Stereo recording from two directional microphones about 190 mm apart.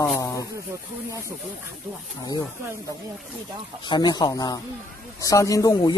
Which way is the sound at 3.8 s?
25° left (ahead or behind).